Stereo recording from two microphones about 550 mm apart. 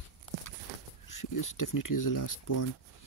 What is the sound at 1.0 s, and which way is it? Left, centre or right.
Speech, left.